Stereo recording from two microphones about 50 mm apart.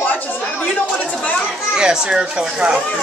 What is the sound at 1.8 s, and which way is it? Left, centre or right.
Speech, centre.